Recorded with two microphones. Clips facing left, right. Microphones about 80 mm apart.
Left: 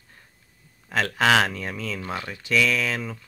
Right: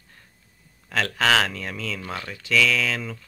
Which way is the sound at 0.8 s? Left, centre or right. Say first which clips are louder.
Left 1 dB; centre.